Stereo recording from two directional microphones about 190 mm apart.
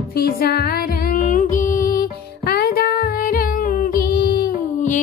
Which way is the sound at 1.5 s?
45° left (ahead or behind).